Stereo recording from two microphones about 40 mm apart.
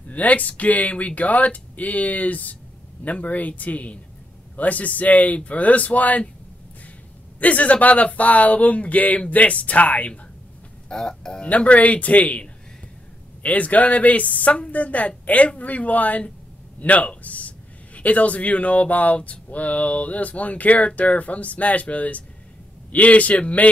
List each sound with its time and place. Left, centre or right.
0.1 s a man's voice: left
7.3 s a man's voice: left
10.9 s speech: centre
11.4 s a man's voice: left